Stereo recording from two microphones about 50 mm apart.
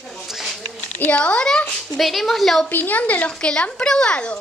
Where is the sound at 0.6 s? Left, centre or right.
Left.